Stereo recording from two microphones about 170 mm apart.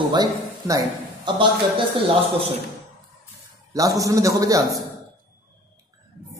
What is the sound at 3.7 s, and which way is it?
Speech, 20° right (ahead or behind).